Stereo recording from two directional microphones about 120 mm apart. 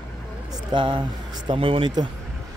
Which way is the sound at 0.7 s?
40° right (ahead or behind).